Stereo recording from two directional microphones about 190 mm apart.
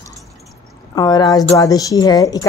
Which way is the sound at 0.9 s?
20° left (ahead or behind).